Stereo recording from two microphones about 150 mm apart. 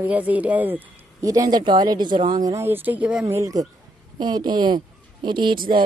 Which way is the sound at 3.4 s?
25° right (ahead or behind).